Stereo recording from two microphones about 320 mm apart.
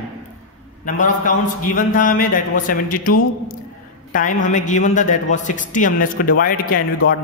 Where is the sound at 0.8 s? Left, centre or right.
Left.